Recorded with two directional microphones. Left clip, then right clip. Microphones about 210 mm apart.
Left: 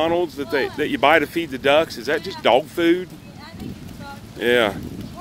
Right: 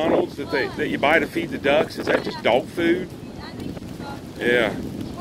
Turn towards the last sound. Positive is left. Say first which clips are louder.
# left 2 dB
turn(degrees=15)  # may be behind; listen again after turning